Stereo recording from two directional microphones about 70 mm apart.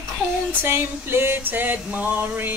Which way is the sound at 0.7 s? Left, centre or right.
Right.